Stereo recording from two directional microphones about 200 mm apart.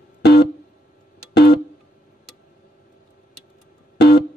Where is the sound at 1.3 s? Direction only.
55° left (ahead or behind).